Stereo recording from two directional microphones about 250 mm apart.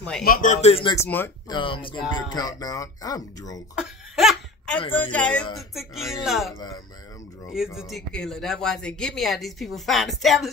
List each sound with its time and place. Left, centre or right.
0.2 s speech: left
0.9 s speech: centre
1.6 s speech: centre
3.7 s laughter: centre
5.1 s speech: centre
7.5 s speech: centre